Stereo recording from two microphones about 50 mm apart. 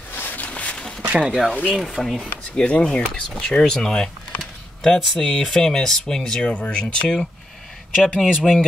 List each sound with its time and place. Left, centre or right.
0.1 s a sound: left
0.5 s walk: left
1.2 s speech: centre
1.5 s speech: left
1.8 s speech: centre
2.5 s speech: centre
6.4 s speech: left
8.2 s speech: centre